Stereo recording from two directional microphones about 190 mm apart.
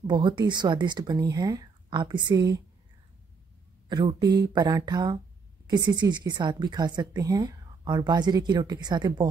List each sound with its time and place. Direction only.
0.0 s a woman's voice: 25° right (ahead or behind)
3.9 s a woman's voice: 20° right (ahead or behind)